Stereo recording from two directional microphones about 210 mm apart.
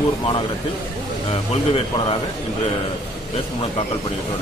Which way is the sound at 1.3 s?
25° left (ahead or behind).